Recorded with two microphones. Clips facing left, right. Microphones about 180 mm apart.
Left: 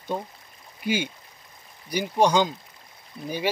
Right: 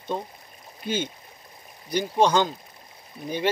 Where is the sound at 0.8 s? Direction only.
10° left (ahead or behind).